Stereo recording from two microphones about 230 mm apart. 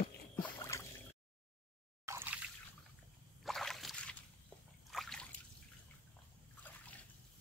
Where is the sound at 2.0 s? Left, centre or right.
Centre.